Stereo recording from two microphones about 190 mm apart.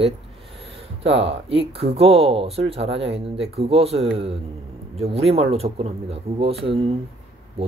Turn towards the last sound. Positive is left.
turn(degrees=-30)  # may be behind; listen again after turning